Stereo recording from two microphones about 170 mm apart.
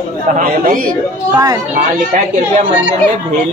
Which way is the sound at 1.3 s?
20° right (ahead or behind).